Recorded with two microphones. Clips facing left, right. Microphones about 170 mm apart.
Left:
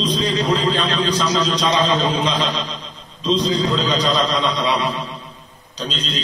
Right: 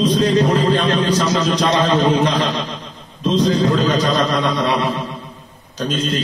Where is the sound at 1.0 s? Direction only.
55° right (ahead or behind).